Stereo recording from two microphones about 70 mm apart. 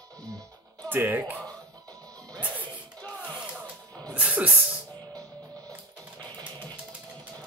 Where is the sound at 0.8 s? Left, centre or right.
Right.